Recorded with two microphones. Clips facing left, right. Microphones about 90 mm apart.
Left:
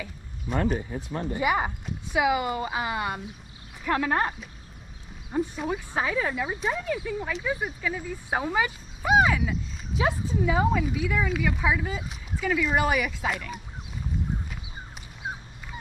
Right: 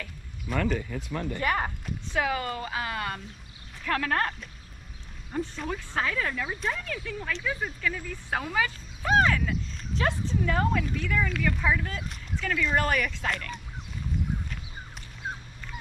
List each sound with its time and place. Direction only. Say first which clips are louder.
0.5 s speech: left 2 dB; 30° left (ahead or behind)
1.3 s speech: left 4 dB; 10° left (ahead or behind)
15.2 s dog: left 1 dB; 10° left (ahead or behind)